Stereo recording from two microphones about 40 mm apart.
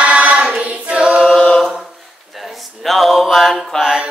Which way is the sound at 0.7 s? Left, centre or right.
Right.